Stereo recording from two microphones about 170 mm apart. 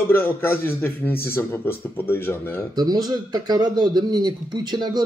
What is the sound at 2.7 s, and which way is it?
Speech, 25° right (ahead or behind).